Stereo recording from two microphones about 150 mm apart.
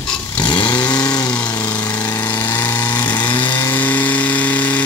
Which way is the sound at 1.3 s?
10° left (ahead or behind).